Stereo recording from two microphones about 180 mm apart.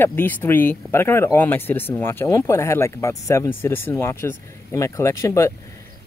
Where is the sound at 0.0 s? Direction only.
10° left (ahead or behind).